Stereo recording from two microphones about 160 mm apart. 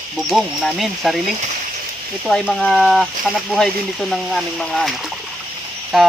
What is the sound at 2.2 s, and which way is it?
Speech, centre (ahead or behind).